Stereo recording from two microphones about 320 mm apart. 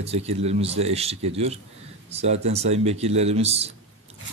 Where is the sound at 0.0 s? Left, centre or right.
Centre.